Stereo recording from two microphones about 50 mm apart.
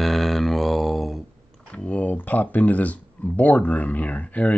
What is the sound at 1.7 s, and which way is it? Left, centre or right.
Speech, left.